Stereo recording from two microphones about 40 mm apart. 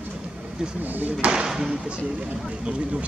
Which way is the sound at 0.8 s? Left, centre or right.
Right.